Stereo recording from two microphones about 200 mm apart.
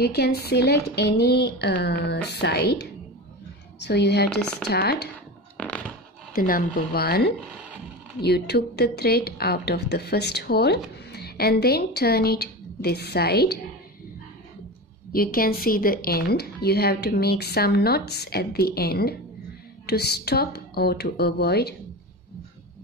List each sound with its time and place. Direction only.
0.0 s a woman's voice: 55° left (ahead or behind)
5.6 s a sound: 5° left (ahead or behind)
6.3 s a woman's voice: 45° left (ahead or behind)
15.1 s a woman's voice: 45° left (ahead or behind)